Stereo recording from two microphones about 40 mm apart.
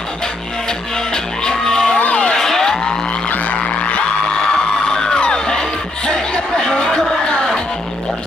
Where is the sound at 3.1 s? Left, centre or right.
Left.